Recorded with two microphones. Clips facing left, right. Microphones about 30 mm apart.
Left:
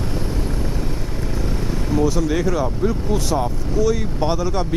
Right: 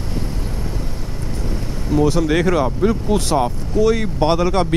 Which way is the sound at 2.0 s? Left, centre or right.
Right.